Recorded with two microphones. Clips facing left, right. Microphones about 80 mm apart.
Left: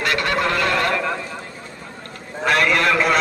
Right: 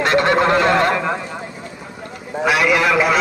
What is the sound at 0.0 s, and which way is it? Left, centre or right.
Fowl, right.